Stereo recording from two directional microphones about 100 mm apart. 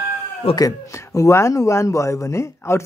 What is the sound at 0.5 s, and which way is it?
Speech, 35° left (ahead or behind).